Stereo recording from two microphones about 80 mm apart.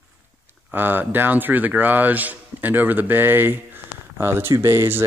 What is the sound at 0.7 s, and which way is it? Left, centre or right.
Speech, right.